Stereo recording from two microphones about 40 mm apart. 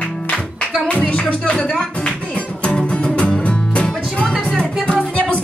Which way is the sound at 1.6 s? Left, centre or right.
Centre.